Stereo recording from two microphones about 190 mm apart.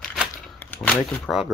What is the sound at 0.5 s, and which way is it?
Shuffling cards, 10° left (ahead or behind).